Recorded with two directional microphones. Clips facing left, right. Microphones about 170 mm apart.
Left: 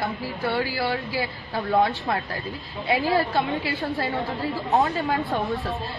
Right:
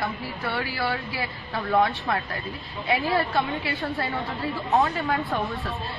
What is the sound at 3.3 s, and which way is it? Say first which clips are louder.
A woman's voice: left 2 dB; 20° left (ahead or behind).